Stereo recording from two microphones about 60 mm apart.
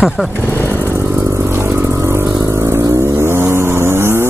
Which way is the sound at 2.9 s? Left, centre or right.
Right.